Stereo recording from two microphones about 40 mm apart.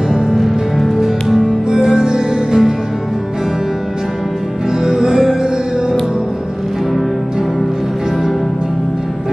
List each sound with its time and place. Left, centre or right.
0.1 s music: centre
1.0 s music: centre
4.7 s music: centre